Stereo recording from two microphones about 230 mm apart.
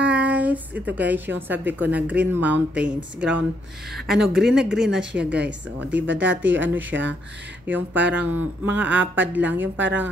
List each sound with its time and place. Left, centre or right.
0.0 s a woman's voice: centre
3.9 s speech: centre
5.9 s speech: right
7.6 s speech: centre
9.0 s speech: right
9.3 s speech: centre
9.6 s speech: right